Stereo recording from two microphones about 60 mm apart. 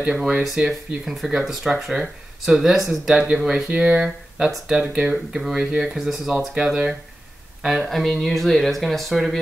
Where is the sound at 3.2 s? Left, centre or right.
Right; by 6.3 s centre.